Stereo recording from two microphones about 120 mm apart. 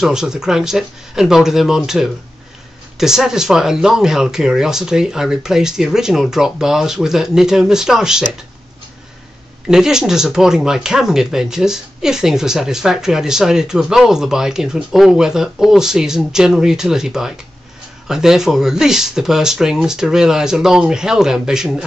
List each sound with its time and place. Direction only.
0.0 s speech: 5° right (ahead or behind)
9.7 s speech: 5° right (ahead or behind)